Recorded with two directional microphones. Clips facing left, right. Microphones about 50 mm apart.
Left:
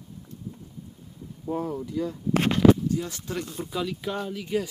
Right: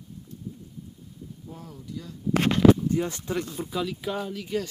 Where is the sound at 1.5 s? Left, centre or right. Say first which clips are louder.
Left 13 dB; left.